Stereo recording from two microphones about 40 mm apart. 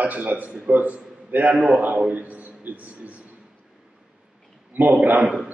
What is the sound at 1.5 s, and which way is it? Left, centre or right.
Speech, right.